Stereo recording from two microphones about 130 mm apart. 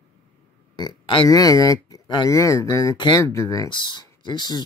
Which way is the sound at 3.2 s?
20° left (ahead or behind).